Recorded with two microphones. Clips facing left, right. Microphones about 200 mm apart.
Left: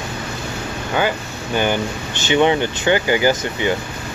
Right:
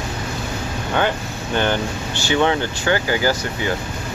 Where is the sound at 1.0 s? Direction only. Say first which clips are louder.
Left 1 dB; 5° left (ahead or behind).